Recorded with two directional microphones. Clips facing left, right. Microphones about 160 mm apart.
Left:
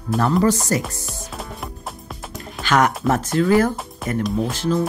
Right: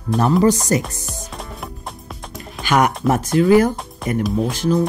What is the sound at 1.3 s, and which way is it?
Music, centre (ahead or behind).